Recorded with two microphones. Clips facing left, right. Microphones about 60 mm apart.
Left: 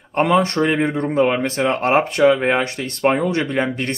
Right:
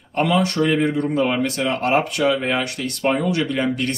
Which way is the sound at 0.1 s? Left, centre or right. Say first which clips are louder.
Left 3 dB; left.